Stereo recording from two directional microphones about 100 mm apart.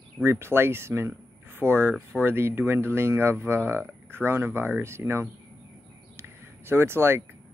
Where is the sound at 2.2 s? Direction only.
25° right (ahead or behind).